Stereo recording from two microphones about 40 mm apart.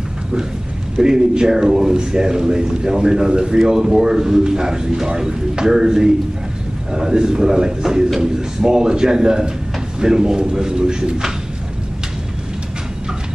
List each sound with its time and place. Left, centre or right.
0.9 s a man's voice: centre